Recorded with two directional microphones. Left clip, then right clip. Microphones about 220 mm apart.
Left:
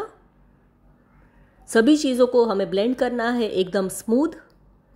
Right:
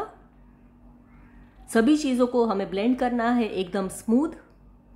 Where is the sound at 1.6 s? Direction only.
20° left (ahead or behind).